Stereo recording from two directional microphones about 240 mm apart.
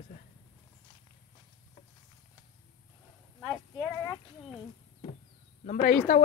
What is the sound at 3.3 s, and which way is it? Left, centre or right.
Speech, centre.